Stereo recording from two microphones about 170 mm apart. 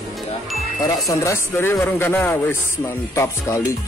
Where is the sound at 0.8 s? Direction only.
20° left (ahead or behind).